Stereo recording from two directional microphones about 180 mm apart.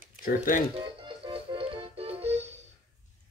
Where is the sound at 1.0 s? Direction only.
30° right (ahead or behind).